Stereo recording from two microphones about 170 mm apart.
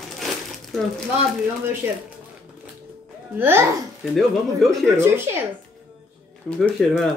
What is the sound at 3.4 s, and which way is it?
Speech, 15° right (ahead or behind).